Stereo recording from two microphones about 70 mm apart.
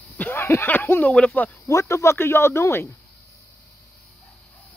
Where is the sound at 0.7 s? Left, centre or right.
Left.